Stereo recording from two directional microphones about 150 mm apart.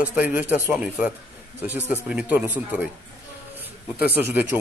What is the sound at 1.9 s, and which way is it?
Speech, 10° right (ahead or behind).